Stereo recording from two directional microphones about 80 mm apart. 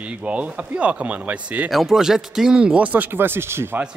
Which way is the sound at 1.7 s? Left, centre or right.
Centre.